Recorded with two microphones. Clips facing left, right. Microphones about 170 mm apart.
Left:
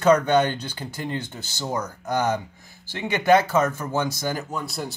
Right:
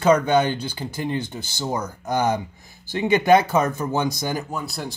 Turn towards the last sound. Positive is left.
turn(degrees=0)  # may be behind; listen again after turning